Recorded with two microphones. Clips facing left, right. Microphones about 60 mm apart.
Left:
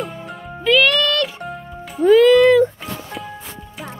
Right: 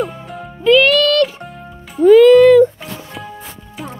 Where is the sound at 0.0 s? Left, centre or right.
Centre.